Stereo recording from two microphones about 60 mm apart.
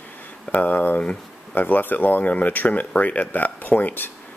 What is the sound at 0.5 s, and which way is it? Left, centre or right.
Speech, left.